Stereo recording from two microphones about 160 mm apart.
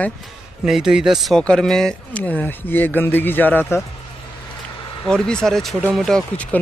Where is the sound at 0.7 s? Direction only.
5° right (ahead or behind); by 3.8 s 15° left (ahead or behind).